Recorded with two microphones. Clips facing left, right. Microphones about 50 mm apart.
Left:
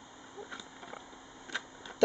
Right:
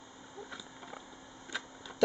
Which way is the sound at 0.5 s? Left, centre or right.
Centre.